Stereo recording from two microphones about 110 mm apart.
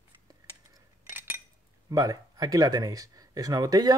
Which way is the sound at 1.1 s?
20° right (ahead or behind).